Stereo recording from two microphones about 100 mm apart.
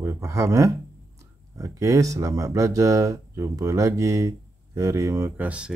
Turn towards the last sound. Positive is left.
turn(degrees=-10)  # may be behind; listen again after turning